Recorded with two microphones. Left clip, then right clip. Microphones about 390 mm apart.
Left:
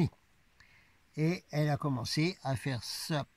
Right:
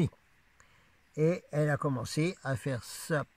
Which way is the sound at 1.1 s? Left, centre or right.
Centre.